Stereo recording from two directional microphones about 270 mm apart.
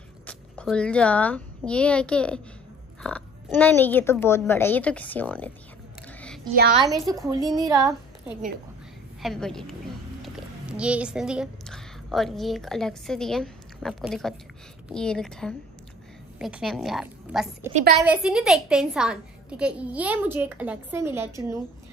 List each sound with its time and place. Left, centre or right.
0.3 s a woman's voice: centre
6.7 s a woman's voice: centre
9.2 s a woman's voice: centre
10.8 s a woman's voice: centre